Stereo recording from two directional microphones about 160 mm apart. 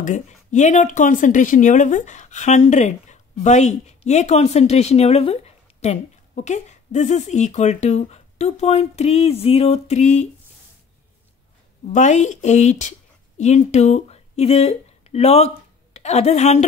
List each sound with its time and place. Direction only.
0.0 s speech: 50° left (ahead or behind)
11.8 s speech: 50° left (ahead or behind)